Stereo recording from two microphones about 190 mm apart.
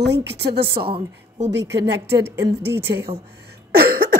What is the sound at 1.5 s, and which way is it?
Speech, 65° right (ahead or behind).